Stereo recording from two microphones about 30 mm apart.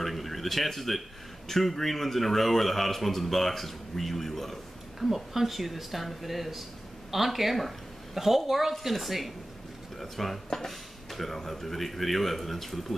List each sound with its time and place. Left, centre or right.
0.0 s a sound: centre
1.5 s a man's voice: centre
5.3 s speech: centre